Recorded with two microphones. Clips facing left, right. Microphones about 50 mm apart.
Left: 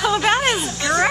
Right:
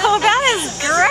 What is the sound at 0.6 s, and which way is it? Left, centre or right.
Speech, right.